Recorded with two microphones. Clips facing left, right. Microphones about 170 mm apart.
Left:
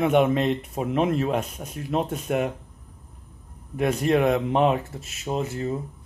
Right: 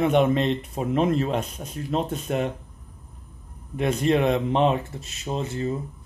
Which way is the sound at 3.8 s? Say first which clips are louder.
Even; 5° left (ahead or behind).